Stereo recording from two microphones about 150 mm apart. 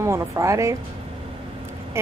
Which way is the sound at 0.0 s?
20° right (ahead or behind).